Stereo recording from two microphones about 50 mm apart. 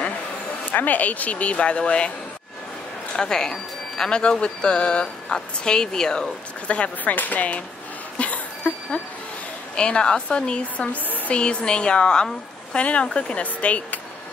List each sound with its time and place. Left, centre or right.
0.7 s a woman's voice: left
3.2 s speech: centre
6.7 s a woman's voice: left
8.2 s a sound: left
9.8 s a woman's voice: centre